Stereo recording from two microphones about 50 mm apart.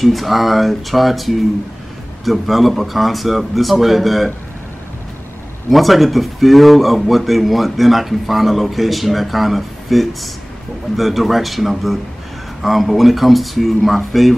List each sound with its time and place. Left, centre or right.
0.0 s speech: centre
5.7 s speech: centre